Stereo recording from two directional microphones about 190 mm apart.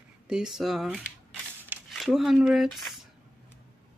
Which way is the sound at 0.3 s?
Centre (ahead or behind).